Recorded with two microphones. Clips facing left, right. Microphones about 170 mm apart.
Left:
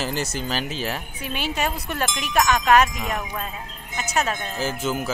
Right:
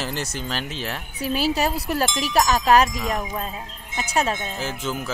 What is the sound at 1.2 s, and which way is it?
Speech, 35° right (ahead or behind).